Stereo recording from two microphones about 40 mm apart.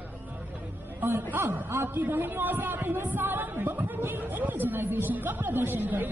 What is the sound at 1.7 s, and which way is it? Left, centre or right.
Speech, right.